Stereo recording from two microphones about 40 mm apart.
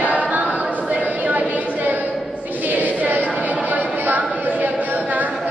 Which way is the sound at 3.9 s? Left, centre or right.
Right.